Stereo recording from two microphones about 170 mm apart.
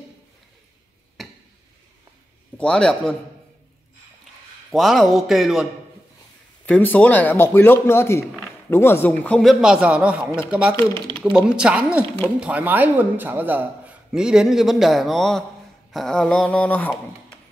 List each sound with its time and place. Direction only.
1.2 s a sound: centre (ahead or behind)
2.5 s a man's voice: 5° left (ahead or behind)
4.6 s a man's voice: centre (ahead or behind)
6.6 s a man's voice: 10° left (ahead or behind)